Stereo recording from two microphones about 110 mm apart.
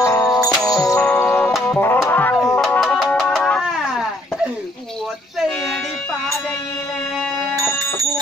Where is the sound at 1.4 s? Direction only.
5° left (ahead or behind).